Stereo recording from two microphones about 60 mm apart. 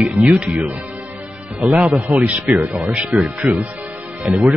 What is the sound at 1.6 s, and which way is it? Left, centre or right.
Speech, centre.